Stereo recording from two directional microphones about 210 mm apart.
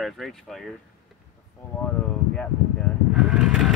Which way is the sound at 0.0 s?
Centre (ahead or behind).